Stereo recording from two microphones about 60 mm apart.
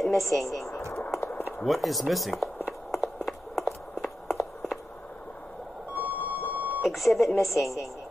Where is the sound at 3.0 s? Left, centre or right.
Centre.